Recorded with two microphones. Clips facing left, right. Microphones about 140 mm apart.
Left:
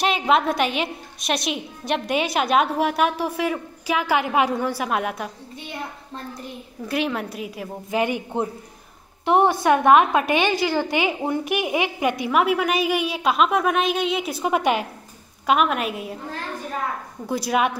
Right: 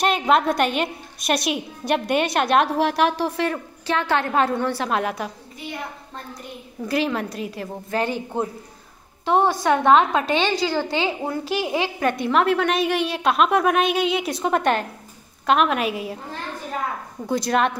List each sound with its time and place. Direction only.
0.0 s a woman's voice: centre (ahead or behind)
6.4 s a woman's voice: centre (ahead or behind)
7.9 s a man's voice: 15° left (ahead or behind)
9.2 s a woman's voice: 20° left (ahead or behind); by 16.2 s centre (ahead or behind)
17.3 s a woman's voice: 5° left (ahead or behind)